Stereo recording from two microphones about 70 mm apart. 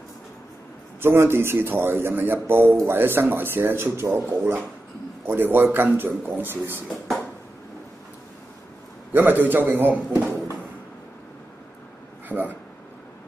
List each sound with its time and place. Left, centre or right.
1.0 s speech: right
6.9 s a sound: centre
9.1 s a man's voice: right
12.3 s speech: right